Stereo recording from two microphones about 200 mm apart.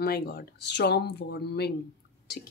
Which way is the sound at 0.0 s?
50° left (ahead or behind).